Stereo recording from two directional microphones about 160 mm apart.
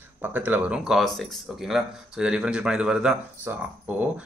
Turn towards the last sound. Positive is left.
turn(degrees=-10)  # may be behind; listen again after turning